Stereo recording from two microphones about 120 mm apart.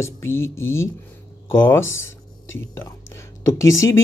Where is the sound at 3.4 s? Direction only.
25° left (ahead or behind).